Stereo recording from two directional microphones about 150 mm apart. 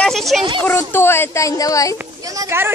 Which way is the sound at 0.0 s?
Centre (ahead or behind).